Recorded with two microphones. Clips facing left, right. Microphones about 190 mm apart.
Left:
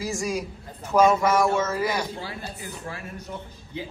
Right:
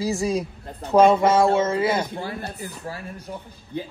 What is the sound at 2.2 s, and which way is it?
Speech, 50° right (ahead or behind).